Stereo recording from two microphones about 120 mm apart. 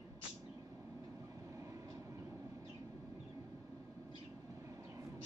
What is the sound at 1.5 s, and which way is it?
Vehicle, 25° right (ahead or behind).